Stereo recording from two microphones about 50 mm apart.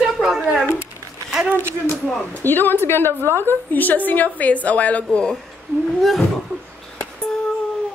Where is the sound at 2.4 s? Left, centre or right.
Left.